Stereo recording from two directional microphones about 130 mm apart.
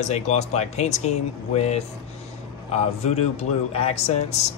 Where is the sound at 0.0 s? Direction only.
60° left (ahead or behind).